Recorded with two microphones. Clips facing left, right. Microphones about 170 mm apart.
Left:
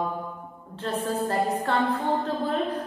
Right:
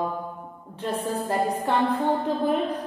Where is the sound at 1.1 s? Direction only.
10° right (ahead or behind).